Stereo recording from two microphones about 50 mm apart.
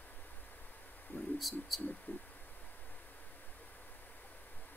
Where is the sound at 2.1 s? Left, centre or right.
Left.